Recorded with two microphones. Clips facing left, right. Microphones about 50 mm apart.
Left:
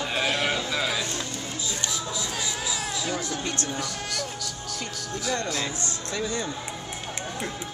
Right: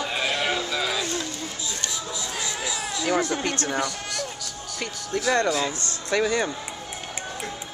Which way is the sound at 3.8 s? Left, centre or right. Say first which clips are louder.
Right 2 dB; centre.